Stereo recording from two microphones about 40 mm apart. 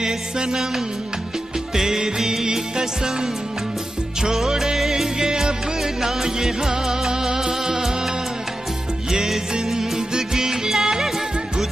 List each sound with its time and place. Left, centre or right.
0.0 s music: centre
1.8 s music: centre
9.1 s music: centre